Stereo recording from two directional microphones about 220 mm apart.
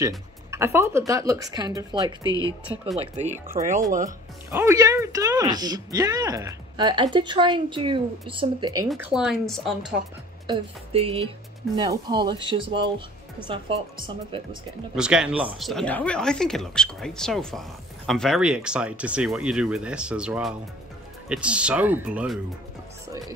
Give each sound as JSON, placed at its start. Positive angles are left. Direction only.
{"t": 0.5, "sound": "speech", "side_deg": -10}
{"t": 2.2, "sound": "speech", "side_deg": 15}
{"t": 3.6, "sound": "speech", "side_deg": -25}
{"t": 4.5, "sound": "speech", "side_deg": -10}
{"t": 8.9, "sound": "speech", "side_deg": -5}
{"t": 10.4, "sound": "speech", "side_deg": -25}
{"t": 15.0, "sound": "speech", "side_deg": -5}
{"t": 23.0, "sound": "music", "side_deg": -15}